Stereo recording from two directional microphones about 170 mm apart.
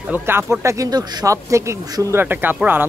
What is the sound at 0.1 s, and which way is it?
A man's voice, 10° right (ahead or behind).